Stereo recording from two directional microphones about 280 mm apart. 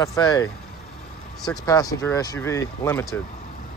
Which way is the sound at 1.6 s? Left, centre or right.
Centre.